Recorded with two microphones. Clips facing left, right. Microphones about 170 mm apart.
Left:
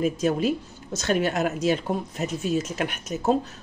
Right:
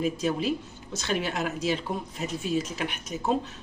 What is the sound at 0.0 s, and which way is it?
Speech, 45° left (ahead or behind).